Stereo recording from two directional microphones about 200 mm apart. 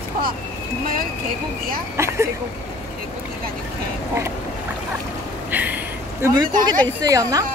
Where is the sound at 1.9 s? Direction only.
15° right (ahead or behind).